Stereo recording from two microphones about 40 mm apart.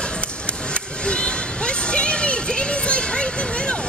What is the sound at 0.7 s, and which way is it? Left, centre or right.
Music, left.